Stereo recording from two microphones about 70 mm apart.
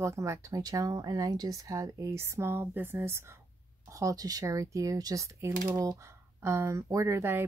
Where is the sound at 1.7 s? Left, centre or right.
Right.